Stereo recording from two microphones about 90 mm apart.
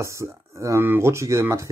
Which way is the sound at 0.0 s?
35° right (ahead or behind).